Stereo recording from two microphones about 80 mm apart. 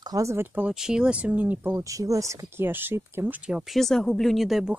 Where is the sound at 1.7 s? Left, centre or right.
Right.